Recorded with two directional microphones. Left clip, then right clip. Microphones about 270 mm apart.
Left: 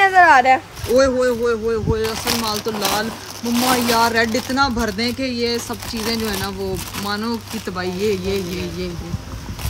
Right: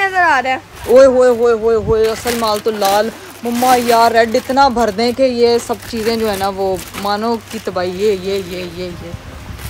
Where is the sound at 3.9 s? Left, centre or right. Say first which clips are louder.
Right 6 dB; centre.